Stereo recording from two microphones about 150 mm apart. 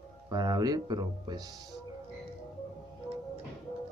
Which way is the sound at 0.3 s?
25° right (ahead or behind).